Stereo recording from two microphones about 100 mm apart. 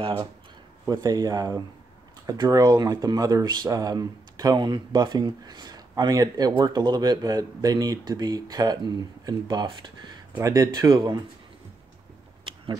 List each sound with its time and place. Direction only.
0.8 s speech: 40° right (ahead or behind)
10.9 s speech: 45° right (ahead or behind)
12.5 s a sound: 60° right (ahead or behind)